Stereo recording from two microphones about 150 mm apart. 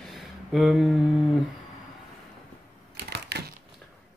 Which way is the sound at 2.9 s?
90° right.